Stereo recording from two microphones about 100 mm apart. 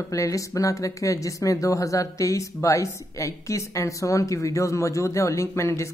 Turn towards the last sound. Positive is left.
turn(degrees=30)  # may be behind; listen again after turning